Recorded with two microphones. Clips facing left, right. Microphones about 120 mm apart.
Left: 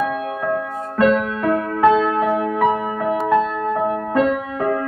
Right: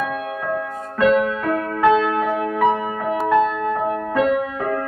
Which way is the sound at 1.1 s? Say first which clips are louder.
Even; centre (ahead or behind).